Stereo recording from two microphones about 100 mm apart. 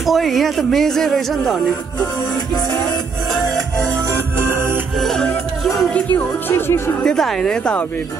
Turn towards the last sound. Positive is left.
turn(degrees=10)  # may be behind; listen again after turning